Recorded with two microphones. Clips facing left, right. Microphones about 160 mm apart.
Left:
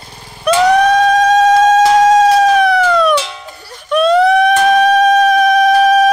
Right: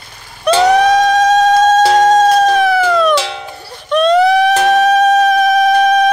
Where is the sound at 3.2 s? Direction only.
80° right.